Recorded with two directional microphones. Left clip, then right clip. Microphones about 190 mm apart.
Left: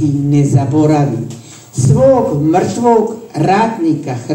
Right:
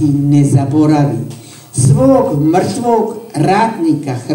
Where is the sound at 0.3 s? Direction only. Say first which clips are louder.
Right 1 dB; 65° right (ahead or behind).